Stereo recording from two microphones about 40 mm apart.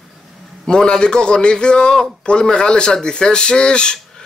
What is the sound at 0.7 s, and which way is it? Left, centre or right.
A man's voice, left.